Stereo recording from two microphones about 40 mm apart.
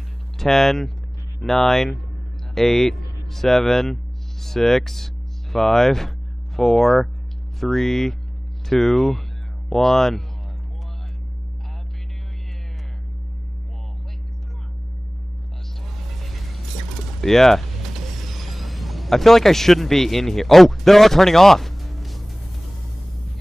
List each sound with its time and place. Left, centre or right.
0.4 s speech: centre
16.0 s vehicle: centre
17.2 s speech: centre